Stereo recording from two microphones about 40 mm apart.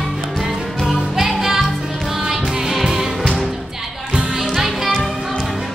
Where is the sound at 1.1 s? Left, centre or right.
Centre.